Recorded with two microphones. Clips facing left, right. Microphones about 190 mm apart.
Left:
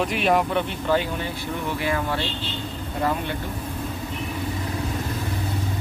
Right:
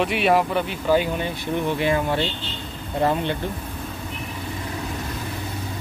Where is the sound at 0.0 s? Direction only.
Centre (ahead or behind).